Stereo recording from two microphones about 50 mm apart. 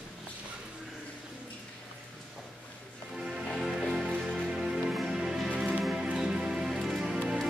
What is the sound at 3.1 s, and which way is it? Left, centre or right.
Music, centre.